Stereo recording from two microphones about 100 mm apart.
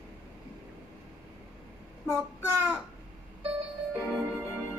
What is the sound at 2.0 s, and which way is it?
Child singing, 25° right (ahead or behind).